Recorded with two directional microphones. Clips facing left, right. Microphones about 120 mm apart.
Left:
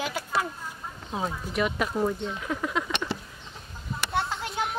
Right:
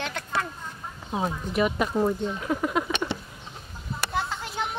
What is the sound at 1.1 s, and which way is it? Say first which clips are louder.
Speech: right 3 dB; 5° right (ahead or behind).